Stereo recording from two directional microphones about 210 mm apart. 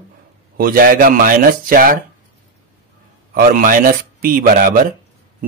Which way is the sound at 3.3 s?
40° right (ahead or behind).